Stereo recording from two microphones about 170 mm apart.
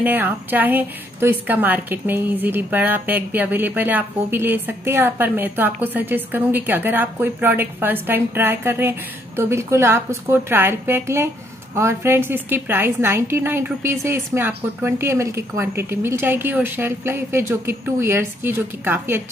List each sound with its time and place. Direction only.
0.0 s a woman's voice: 10° right (ahead or behind)